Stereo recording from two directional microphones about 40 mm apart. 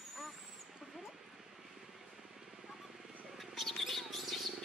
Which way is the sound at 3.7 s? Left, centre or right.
Centre.